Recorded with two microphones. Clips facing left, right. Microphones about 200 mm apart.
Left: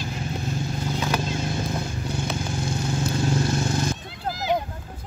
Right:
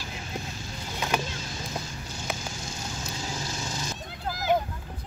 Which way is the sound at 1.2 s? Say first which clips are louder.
Left 10 dB; 60° left (ahead or behind).